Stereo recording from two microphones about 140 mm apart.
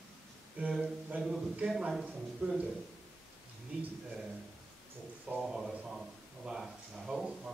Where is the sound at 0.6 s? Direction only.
10° right (ahead or behind).